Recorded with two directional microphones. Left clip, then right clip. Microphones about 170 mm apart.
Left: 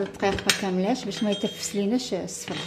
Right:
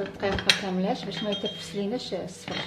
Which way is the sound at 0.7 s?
40° left (ahead or behind).